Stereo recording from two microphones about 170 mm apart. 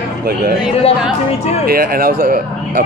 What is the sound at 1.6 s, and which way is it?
Speech, 60° right (ahead or behind).